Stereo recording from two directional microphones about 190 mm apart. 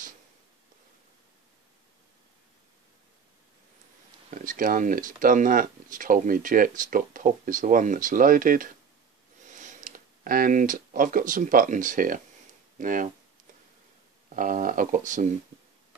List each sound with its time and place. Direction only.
4.3 s speech: 45° right (ahead or behind)
14.3 s speech: 45° right (ahead or behind)